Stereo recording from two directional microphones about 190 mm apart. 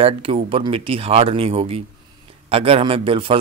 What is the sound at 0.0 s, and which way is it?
A man's voice, 30° right (ahead or behind).